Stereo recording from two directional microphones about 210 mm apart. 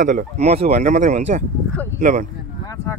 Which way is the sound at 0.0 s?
35° right (ahead or behind).